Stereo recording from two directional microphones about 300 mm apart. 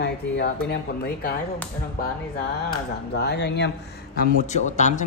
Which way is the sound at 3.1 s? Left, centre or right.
Left.